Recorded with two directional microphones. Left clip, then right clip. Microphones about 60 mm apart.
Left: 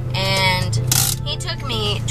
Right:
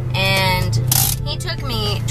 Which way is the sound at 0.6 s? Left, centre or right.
Centre.